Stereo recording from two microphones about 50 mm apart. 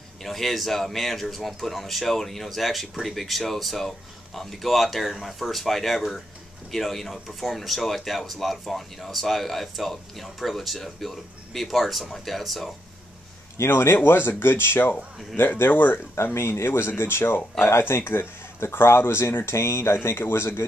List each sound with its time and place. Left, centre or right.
0.2 s speech: centre
13.6 s speech: left
16.3 s speech: left